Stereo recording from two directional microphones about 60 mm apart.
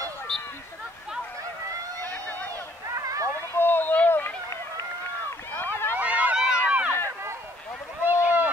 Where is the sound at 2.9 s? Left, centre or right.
Right.